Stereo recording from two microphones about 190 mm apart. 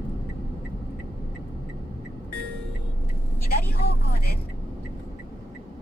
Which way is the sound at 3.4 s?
55° left (ahead or behind).